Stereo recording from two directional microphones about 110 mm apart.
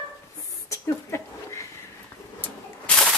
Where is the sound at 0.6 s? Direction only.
25° left (ahead or behind).